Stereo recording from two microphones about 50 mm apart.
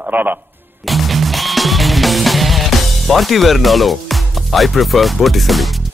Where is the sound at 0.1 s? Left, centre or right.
Right.